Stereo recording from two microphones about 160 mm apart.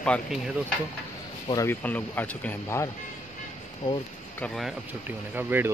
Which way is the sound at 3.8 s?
25° left (ahead or behind).